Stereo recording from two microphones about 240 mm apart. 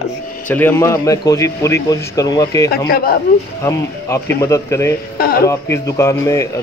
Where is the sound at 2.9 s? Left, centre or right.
Left.